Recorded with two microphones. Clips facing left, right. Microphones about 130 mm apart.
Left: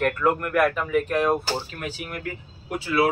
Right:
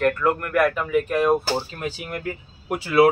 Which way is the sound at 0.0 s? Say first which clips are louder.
Right 1 dB; 5° left (ahead or behind).